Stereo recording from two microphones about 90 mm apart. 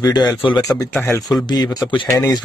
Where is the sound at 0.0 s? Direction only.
45° left (ahead or behind).